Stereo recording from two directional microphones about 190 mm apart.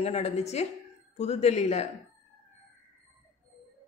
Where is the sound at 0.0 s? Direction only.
35° left (ahead or behind).